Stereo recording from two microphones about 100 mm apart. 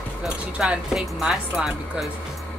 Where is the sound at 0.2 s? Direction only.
5° right (ahead or behind).